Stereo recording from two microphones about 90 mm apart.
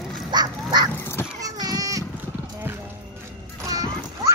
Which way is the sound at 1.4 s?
45° right (ahead or behind).